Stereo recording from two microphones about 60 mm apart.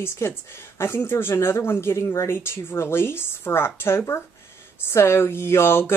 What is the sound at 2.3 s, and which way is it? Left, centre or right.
Speech, left.